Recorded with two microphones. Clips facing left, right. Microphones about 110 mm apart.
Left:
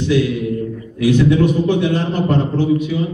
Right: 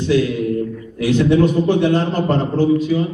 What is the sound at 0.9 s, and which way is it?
Speech, 30° right (ahead or behind).